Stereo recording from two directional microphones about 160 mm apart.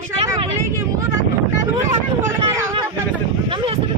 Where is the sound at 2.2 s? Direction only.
15° right (ahead or behind).